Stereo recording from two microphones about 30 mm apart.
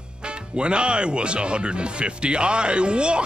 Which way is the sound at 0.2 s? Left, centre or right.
Right.